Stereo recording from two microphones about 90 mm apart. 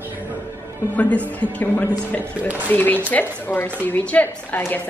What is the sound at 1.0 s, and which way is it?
A woman's voice, 15° left (ahead or behind).